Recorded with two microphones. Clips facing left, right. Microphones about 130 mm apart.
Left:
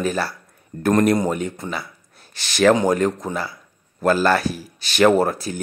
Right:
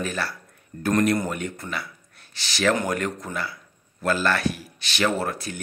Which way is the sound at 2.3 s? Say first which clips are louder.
Left 7 dB; 50° left (ahead or behind).